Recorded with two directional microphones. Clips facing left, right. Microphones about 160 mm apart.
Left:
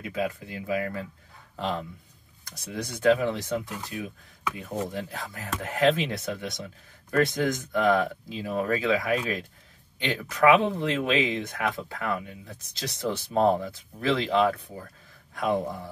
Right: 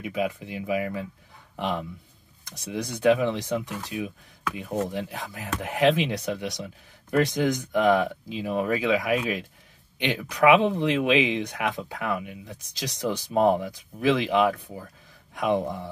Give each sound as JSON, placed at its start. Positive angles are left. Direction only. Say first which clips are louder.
{"t": 0.0, "sound": "speech", "louder": "right 2 dB", "side_deg": -20}